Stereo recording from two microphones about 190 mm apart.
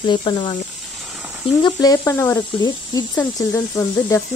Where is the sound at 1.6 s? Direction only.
20° left (ahead or behind).